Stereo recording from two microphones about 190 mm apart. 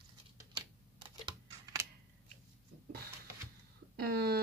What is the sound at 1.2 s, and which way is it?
Scissors, 15° right (ahead or behind).